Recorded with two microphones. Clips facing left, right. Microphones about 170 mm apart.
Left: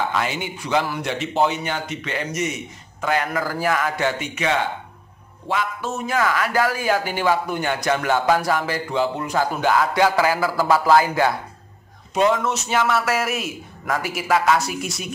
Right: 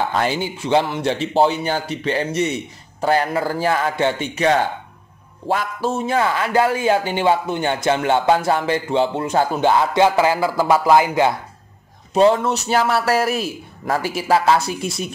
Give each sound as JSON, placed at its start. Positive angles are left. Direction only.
{"t": 0.1, "sound": "speech", "side_deg": -35}
{"t": 12.1, "sound": "speech", "side_deg": -30}